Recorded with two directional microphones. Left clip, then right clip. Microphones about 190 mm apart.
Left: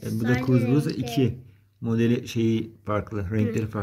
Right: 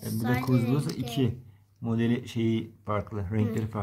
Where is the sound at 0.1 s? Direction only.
30° right (ahead or behind).